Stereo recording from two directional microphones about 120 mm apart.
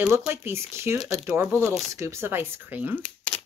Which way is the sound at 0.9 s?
5° right (ahead or behind).